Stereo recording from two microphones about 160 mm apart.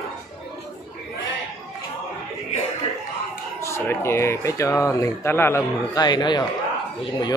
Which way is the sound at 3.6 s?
15° left (ahead or behind).